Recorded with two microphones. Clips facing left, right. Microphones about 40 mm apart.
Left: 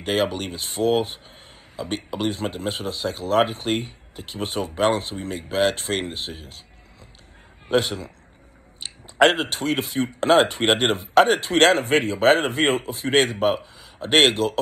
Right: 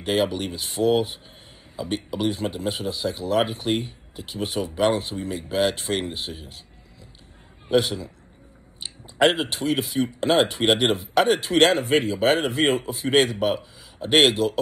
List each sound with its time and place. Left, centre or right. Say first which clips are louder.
0.0 s speech: even; left
7.6 s a man's voice: even; left
9.3 s speech: left 1 dB; left
10.6 s speech: even; left
11.0 s speech: left 3 dB; left